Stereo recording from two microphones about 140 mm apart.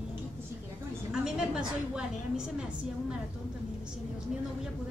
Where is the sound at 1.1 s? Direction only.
5° right (ahead or behind).